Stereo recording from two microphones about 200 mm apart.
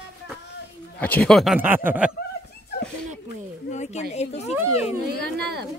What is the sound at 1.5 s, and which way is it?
Speech, 10° right (ahead or behind).